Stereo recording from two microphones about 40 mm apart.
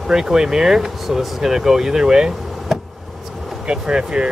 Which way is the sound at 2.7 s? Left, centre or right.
Centre.